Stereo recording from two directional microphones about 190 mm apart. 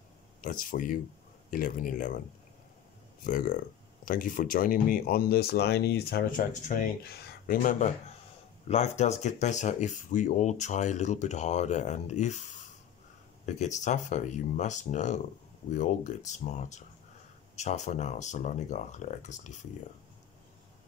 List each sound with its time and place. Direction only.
0.4 s speech: 45° left (ahead or behind)
3.3 s speech: 45° left (ahead or behind)
8.6 s speech: 35° left (ahead or behind)